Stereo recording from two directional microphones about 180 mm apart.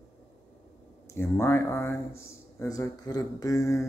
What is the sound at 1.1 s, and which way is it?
Speech, 10° left (ahead or behind).